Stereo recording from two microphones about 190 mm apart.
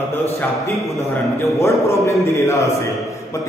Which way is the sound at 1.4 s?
15° left (ahead or behind).